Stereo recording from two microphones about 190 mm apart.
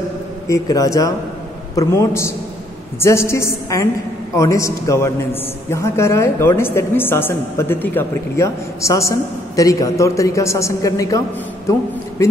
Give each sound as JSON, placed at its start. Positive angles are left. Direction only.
{"t": 0.5, "sound": "a man's voice", "side_deg": 20}